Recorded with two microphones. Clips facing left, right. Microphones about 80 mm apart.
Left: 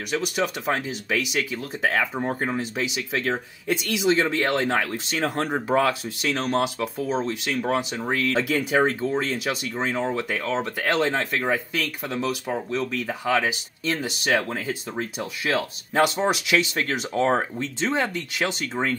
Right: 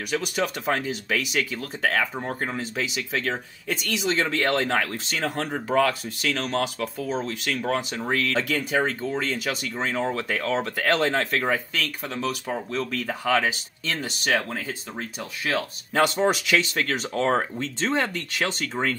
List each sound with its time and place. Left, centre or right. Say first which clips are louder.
0.1 s speech: left 1 dB; centre
5.4 s speech: even; left
5.9 s speech: left 2 dB; centre
7.9 s speech: left 1 dB; centre